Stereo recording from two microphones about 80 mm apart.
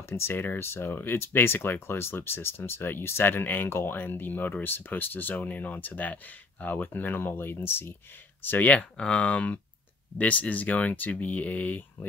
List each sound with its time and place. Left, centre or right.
0.1 s speech: left